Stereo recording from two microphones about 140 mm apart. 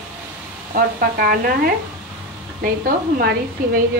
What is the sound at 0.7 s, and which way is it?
Speech, 90° right.